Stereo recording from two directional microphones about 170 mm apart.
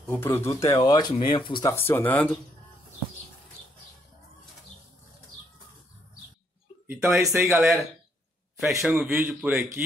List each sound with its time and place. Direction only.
0.0 s speech: 10° left (ahead or behind); by 1.7 s 25° left (ahead or behind)
1.7 s speech: 15° left (ahead or behind)
6.9 s a man's voice: 15° right (ahead or behind)